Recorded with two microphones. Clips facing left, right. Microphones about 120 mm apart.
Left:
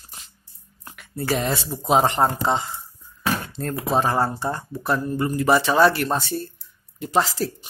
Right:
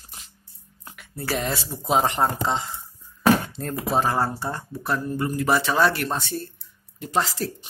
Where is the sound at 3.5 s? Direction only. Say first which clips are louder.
Left 2 dB; 5° right (ahead or behind).